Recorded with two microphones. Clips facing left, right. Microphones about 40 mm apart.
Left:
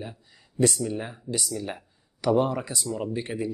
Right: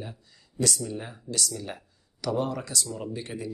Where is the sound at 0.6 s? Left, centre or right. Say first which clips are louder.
Left 5 dB; left.